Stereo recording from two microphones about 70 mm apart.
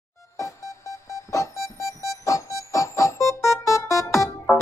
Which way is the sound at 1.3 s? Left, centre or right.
Left.